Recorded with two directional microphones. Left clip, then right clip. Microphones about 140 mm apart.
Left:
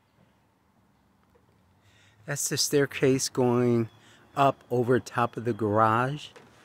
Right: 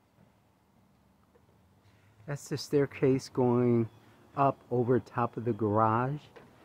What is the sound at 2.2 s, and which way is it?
Speech, 15° left (ahead or behind).